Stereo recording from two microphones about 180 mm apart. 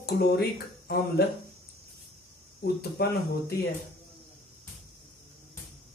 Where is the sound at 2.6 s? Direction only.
60° left (ahead or behind).